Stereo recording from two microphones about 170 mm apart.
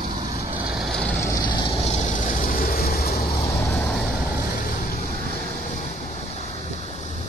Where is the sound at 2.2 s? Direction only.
50° left (ahead or behind).